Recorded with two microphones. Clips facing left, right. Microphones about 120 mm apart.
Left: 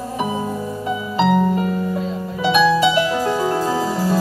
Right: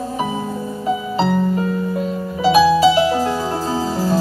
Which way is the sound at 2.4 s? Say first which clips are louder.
Right 3 dB; 30° right (ahead or behind).